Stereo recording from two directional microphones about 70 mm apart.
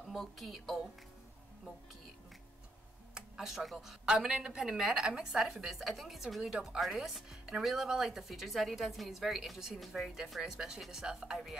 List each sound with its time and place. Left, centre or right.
0.1 s a woman's voice: centre
3.2 s a woman's voice: centre